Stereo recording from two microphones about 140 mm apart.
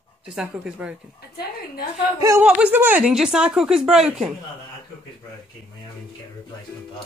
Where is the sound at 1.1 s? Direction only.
90° left.